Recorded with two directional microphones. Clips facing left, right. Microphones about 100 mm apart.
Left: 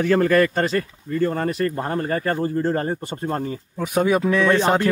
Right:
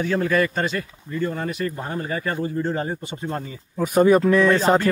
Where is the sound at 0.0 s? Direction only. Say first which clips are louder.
Left 4 dB; 60° left (ahead or behind).